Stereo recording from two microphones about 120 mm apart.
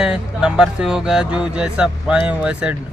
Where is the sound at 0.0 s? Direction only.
5° right (ahead or behind).